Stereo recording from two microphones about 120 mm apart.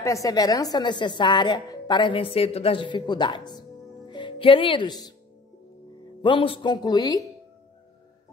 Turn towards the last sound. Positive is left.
turn(degrees=35)  # may be behind; listen again after turning